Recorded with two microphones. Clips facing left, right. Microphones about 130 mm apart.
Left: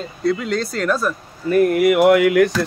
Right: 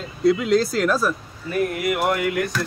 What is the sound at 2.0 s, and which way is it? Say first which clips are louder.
Speech: left 10 dB; 80° left.